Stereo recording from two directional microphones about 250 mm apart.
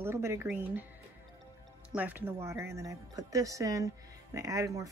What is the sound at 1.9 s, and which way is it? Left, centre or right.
Speech, centre.